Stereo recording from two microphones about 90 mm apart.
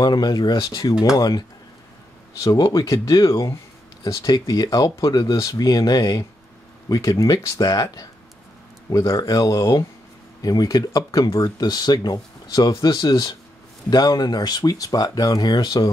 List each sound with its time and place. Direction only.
0.0 s speech: 50° left (ahead or behind)
2.4 s speech: 40° left (ahead or behind)
11.4 s speech: 50° left (ahead or behind)